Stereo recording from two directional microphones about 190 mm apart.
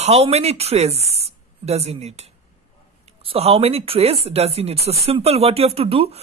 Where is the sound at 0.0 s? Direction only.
35° right (ahead or behind).